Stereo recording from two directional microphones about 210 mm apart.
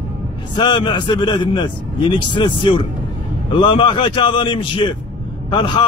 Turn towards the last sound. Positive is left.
turn(degrees=25)  # may be behind; listen again after turning